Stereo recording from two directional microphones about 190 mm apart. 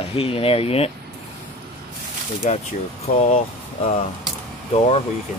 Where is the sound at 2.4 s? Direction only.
40° left (ahead or behind).